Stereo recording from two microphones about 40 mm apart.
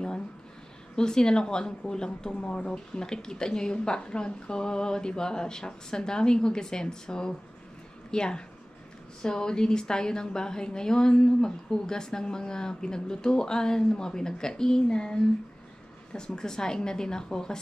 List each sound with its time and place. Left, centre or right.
0.9 s a woman's voice: centre
16.3 s a woman's voice: centre